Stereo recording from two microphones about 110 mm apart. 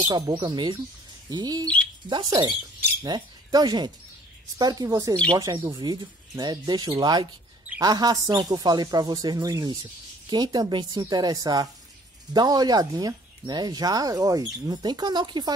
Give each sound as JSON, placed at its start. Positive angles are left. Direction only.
{"t": 0.3, "sound": "speech", "side_deg": -45}